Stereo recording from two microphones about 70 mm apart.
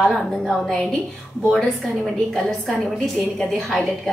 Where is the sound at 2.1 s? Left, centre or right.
Centre.